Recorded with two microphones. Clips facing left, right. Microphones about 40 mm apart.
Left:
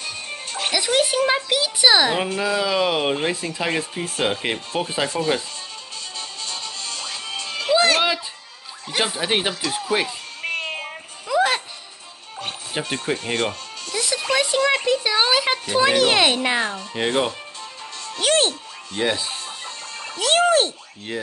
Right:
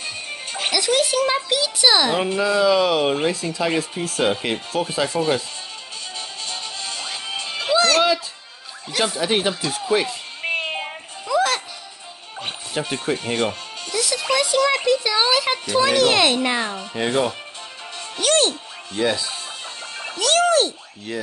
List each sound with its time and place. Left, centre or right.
0.0 s music: centre
0.7 s a child's voice: centre
6.4 s music: right
7.7 s music: centre
8.9 s a child's voice: centre
10.4 s a sound: right
11.2 s music: centre
12.8 s a child's voice: centre
13.9 s music: centre
14.3 s a sound: left
16.9 s a child's voice: centre
18.2 s speech: centre
20.2 s a sound: centre
21.1 s speech: left